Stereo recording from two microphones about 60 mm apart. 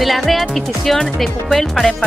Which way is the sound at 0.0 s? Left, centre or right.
Centre.